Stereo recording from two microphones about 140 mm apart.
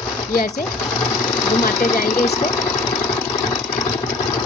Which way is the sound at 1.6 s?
80° left.